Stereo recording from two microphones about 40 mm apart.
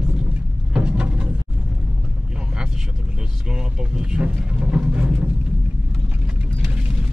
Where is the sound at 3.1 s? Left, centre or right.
Right.